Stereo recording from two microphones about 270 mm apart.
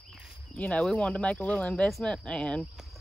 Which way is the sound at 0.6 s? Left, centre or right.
Centre.